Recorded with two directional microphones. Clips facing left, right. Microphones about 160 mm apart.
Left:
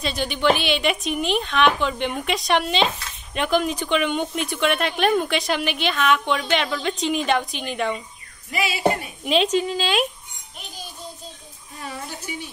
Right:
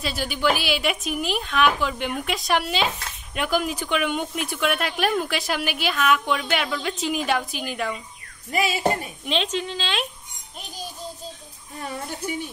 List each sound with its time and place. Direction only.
0.0 s speech: 5° right (ahead or behind)
8.5 s speech: 45° right (ahead or behind)
8.8 s speech: 10° left (ahead or behind)